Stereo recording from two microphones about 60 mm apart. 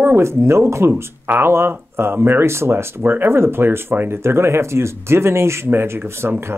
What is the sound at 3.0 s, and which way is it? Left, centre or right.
Speech, right.